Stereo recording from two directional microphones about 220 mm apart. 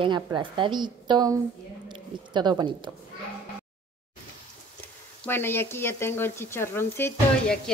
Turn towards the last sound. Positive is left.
turn(degrees=10)  # may be behind; listen again after turning